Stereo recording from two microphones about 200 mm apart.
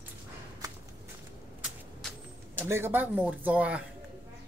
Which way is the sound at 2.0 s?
Centre (ahead or behind).